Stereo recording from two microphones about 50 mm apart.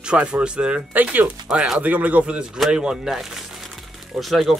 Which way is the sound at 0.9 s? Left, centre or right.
Right.